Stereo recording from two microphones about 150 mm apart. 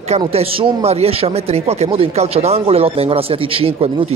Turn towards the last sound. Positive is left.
turn(degrees=-40)  # may be behind; listen again after turning